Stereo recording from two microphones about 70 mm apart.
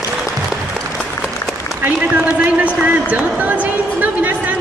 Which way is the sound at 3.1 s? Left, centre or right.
Right.